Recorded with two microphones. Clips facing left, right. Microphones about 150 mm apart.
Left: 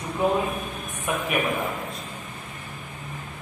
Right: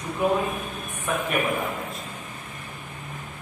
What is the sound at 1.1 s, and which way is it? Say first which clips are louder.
Speech: right 1 dB; 15° left (ahead or behind).